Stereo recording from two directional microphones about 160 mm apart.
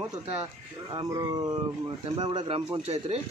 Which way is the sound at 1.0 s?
20° right (ahead or behind).